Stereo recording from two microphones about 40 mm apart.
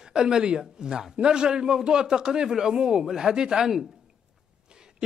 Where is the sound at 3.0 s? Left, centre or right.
Centre.